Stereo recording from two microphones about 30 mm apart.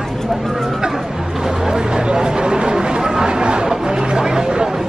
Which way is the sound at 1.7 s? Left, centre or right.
Right.